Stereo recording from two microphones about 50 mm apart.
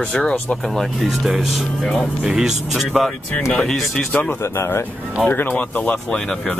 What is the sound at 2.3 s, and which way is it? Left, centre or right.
Speech, centre.